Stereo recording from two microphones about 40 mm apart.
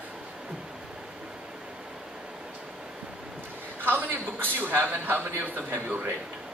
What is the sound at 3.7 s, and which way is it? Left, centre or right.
A man's voice, right.